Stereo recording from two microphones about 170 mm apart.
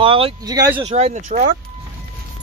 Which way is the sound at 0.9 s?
45° right (ahead or behind).